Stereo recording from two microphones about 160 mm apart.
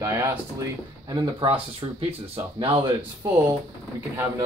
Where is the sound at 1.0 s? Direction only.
30° right (ahead or behind).